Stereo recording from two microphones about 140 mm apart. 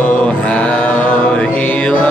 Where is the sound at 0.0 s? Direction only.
10° left (ahead or behind).